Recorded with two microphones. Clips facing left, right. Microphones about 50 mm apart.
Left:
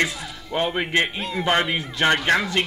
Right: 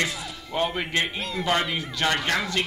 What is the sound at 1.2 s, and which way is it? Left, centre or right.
Speech, centre.